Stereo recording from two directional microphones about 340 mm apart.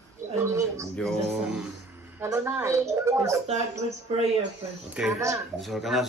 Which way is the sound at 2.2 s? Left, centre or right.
Centre.